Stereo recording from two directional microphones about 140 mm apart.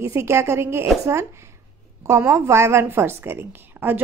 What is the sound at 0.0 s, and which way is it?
A woman's voice, 20° right (ahead or behind).